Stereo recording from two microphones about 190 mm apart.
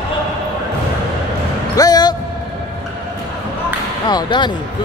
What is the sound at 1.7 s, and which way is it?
Music, 20° left (ahead or behind).